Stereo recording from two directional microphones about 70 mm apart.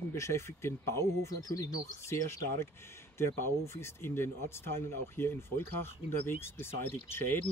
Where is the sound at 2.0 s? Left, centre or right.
Left.